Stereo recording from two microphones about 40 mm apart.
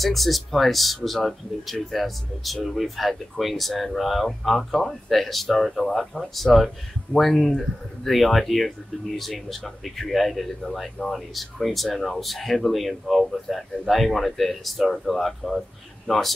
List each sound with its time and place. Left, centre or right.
0.0 s speech: centre
5.8 s speech: centre
6.3 s speech: centre